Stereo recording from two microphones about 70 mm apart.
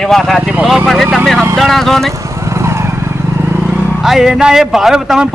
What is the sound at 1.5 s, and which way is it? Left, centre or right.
Speech, centre.